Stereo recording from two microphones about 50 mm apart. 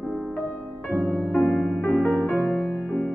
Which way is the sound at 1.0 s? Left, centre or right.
Left.